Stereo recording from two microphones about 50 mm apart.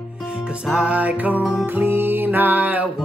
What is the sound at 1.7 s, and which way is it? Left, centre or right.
Music, right.